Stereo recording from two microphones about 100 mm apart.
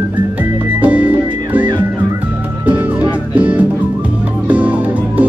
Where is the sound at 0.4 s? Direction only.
15° right (ahead or behind).